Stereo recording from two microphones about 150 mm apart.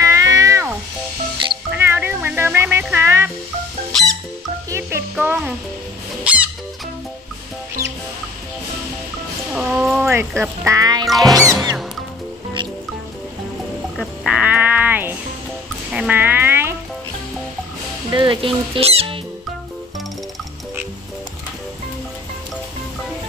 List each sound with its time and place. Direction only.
0.0 s cat: 20° right (ahead or behind)
1.5 s music: 10° right (ahead or behind)
4.6 s music: 20° right (ahead or behind)
9.5 s a sound: 5° right (ahead or behind)
10.0 s speech: 15° right (ahead or behind)
11.1 s music: centre (ahead or behind)
13.9 s music: 5° right (ahead or behind)
18.1 s speech: 35° right (ahead or behind)